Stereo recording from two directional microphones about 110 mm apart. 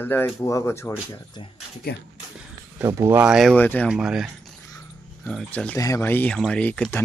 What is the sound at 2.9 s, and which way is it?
Speech, 30° right (ahead or behind).